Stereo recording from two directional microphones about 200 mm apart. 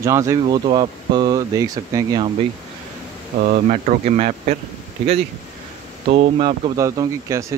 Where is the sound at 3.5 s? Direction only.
35° right (ahead or behind).